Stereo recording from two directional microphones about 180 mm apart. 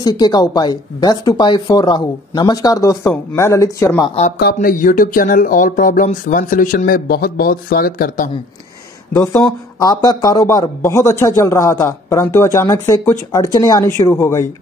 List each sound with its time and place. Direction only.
0.0 s speech: 20° left (ahead or behind)
4.6 s speech: 45° left (ahead or behind)
9.1 s speech: 15° left (ahead or behind)